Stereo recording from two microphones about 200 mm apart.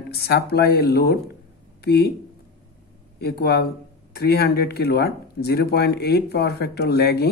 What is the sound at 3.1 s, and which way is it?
Speech, 55° left (ahead or behind).